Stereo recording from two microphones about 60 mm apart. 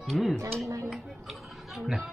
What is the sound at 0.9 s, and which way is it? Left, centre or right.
Music, centre.